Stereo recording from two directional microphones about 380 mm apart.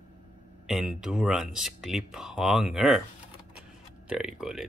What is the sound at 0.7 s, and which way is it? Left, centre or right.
Speech, centre.